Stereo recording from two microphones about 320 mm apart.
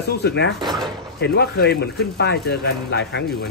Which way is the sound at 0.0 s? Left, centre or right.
Left.